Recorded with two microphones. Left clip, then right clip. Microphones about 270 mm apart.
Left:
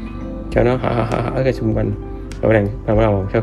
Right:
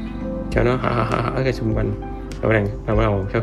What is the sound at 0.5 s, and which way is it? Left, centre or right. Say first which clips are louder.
Speech: left 4 dB; centre.